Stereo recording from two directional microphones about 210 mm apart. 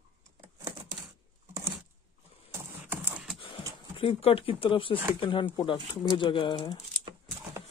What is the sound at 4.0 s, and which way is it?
Speech, 25° left (ahead or behind).